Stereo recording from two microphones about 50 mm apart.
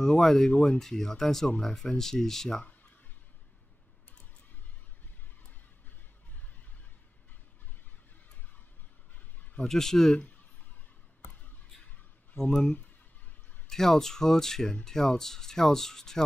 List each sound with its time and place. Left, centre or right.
0.0 s speech: centre
0.5 s speech: left
0.7 s speech: centre
9.7 s speech: centre
12.4 s speech: centre